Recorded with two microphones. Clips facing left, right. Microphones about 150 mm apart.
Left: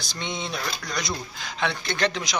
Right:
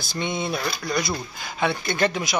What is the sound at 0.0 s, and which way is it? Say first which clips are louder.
Speech: right 5 dB; 55° right (ahead or behind).